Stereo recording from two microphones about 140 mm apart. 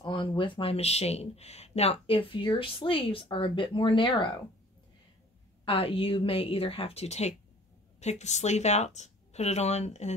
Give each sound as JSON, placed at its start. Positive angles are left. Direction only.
{"t": 0.0, "sound": "speech", "side_deg": 35}
{"t": 5.7, "sound": "speech", "side_deg": 40}